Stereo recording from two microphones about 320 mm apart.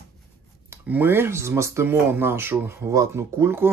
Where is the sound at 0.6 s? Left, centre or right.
Centre.